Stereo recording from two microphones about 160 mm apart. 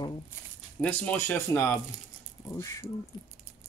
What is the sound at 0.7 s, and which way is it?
Speech, 10° left (ahead or behind).